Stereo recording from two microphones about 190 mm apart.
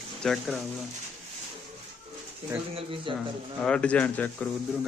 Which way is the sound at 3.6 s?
5° left (ahead or behind).